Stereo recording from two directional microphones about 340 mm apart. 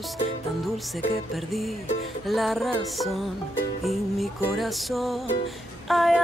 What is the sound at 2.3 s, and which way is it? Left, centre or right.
Music, centre.